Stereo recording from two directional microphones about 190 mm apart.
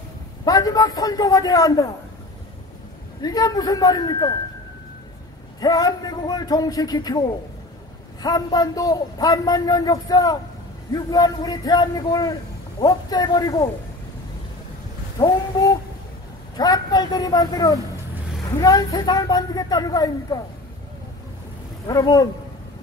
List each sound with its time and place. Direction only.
0.5 s a man's voice: 20° left (ahead or behind)
3.2 s a man's voice: 20° left (ahead or behind)
5.6 s a man's voice: 20° left (ahead or behind)
16.5 s a man's voice: 20° left (ahead or behind)
21.8 s a man's voice: 20° left (ahead or behind)